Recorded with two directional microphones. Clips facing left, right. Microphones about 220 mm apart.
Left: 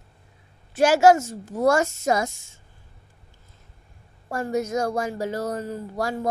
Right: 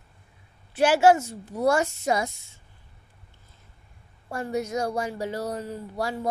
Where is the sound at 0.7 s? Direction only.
45° left (ahead or behind).